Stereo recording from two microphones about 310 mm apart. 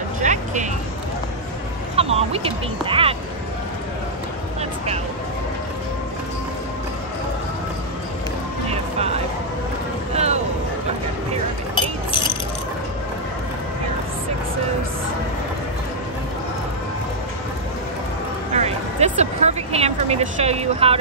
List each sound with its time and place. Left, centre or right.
0.2 s vehicle: right
2.0 s speech: centre
4.6 s music: centre
10.1 s a sound: right
18.5 s music: right